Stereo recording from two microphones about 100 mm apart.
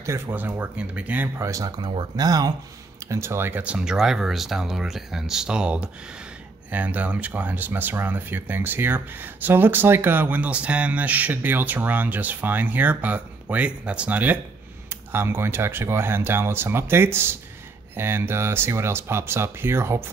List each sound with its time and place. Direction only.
0.0 s speech: 25° right (ahead or behind)
1.4 s speech: 35° right (ahead or behind)
1.8 s speech: 45° right (ahead or behind)
3.1 s speech: 30° right (ahead or behind)